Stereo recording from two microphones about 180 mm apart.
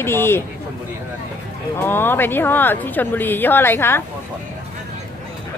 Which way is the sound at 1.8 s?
10° left (ahead or behind).